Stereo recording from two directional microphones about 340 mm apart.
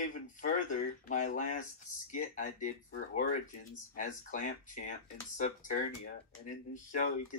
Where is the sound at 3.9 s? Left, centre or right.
Left.